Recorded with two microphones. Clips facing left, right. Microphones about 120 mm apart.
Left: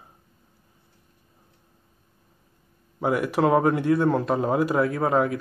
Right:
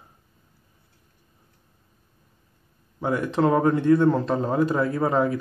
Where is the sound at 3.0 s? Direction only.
10° left (ahead or behind).